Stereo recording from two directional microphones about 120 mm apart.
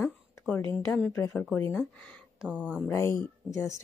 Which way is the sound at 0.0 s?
15° left (ahead or behind).